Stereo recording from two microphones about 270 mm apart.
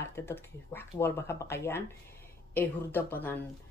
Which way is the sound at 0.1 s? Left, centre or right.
Centre.